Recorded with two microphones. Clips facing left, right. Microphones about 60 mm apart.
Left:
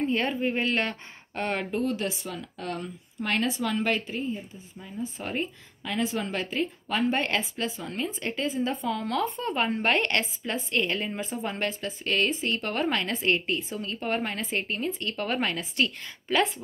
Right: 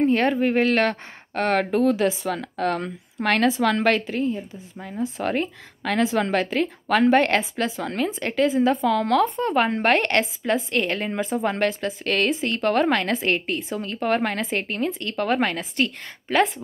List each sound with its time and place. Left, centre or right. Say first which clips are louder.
0.0 s a woman's voice: right 7 dB; right
2.3 s speech: right 9 dB; right
4.7 s speech: right 6 dB; right
5.0 s a woman's voice: right 7 dB; right
11.1 s a woman's voice: right 8 dB; right